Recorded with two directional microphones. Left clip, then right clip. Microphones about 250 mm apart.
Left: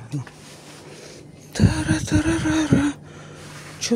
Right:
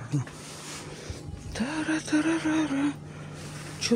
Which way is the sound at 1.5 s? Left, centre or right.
Centre.